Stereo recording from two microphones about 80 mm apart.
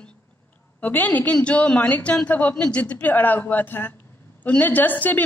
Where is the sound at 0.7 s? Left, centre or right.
Left.